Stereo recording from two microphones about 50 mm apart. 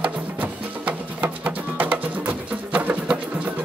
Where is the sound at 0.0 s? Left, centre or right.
Right.